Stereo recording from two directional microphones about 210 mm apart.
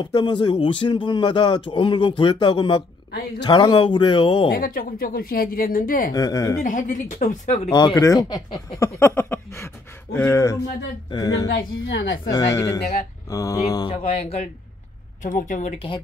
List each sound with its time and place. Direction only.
0.0 s speech: 20° left (ahead or behind)
4.5 s speech: 45° left (ahead or behind)
6.1 s speech: 15° left (ahead or behind)
6.6 s a woman's voice: 35° left (ahead or behind)
7.7 s speech: 15° left (ahead or behind)
9.0 s a sound: 10° left (ahead or behind)
10.1 s speech: 10° left (ahead or behind)
11.5 s a woman's voice: 60° left (ahead or behind)
12.3 s a woman's voice: 15° left (ahead or behind)